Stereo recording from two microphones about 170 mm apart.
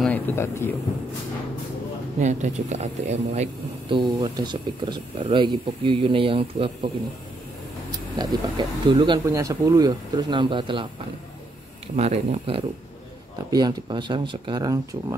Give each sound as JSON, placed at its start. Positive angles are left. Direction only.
{"t": 0.0, "sound": "speech", "side_deg": 10}
{"t": 2.2, "sound": "speech", "side_deg": -45}
{"t": 3.9, "sound": "speech", "side_deg": -25}
{"t": 7.9, "sound": "speech", "side_deg": -25}
{"t": 11.9, "sound": "speech", "side_deg": -40}
{"t": 13.5, "sound": "speech", "side_deg": -25}